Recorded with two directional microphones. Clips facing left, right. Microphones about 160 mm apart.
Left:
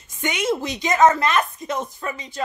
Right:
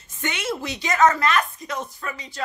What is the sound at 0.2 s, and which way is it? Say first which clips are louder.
Speech: left 5 dB; 15° left (ahead or behind).